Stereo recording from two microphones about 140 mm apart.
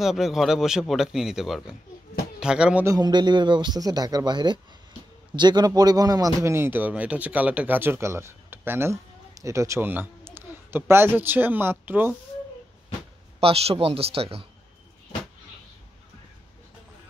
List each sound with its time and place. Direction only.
0.0 s a man's voice: centre (ahead or behind)
2.8 s a man's voice: 25° right (ahead or behind)
13.4 s speech: 45° right (ahead or behind)